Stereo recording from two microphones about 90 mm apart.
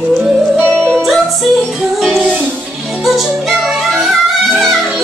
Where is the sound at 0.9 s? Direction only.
5° left (ahead or behind).